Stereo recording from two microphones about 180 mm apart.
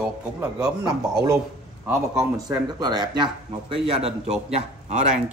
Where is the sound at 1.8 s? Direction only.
10° right (ahead or behind).